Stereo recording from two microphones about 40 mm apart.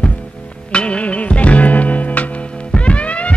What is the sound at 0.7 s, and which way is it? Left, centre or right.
Music, left.